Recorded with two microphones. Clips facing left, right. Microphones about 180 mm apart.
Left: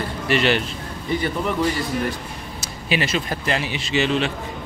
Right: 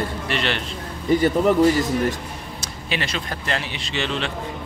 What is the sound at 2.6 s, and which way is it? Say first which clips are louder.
A man's voice: left 5 dB; 5° left (ahead or behind).